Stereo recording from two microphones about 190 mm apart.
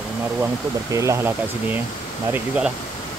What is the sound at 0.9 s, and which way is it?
Speech, 15° right (ahead or behind).